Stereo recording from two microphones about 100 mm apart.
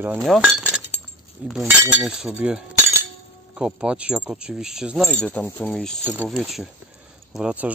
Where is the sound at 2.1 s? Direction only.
10° right (ahead or behind).